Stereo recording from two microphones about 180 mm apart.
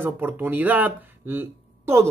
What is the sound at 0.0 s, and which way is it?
Speech, 10° right (ahead or behind).